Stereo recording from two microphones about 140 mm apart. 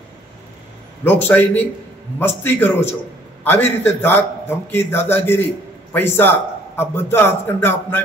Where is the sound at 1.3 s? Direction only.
15° left (ahead or behind).